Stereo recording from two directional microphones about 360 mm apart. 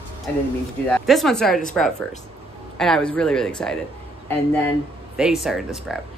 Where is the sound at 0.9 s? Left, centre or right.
Centre.